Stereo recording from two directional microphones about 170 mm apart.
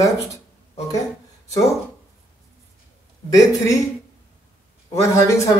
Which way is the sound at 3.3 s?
20° left (ahead or behind).